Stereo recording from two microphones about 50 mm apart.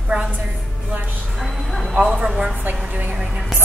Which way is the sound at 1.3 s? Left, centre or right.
Centre.